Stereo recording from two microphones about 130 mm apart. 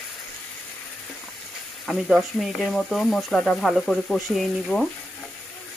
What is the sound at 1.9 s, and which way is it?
Speech, centre (ahead or behind).